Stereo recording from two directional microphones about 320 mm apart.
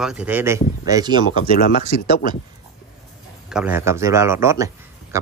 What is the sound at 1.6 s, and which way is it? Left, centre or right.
Speech, left.